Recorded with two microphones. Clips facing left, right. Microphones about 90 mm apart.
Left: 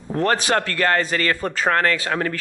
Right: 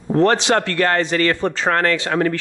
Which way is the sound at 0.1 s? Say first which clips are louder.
Right 4 dB; 25° right (ahead or behind).